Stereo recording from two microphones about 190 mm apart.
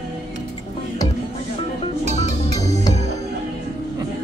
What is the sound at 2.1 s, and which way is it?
Music, 40° right (ahead or behind).